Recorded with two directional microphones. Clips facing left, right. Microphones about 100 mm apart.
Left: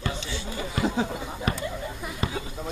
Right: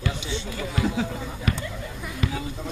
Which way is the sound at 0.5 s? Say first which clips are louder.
Even; 25° left (ahead or behind).